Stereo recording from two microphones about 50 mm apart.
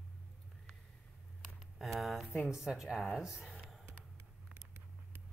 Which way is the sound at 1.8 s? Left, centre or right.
Centre.